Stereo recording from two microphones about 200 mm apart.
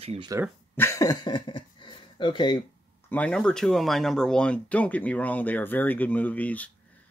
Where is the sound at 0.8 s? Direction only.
15° left (ahead or behind).